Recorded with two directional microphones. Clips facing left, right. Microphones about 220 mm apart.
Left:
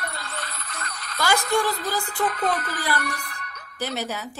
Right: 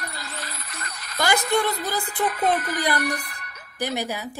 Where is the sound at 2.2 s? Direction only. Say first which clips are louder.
Right 3 dB; 10° right (ahead or behind).